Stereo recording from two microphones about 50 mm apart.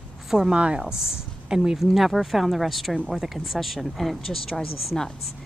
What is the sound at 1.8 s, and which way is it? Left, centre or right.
Speech, centre.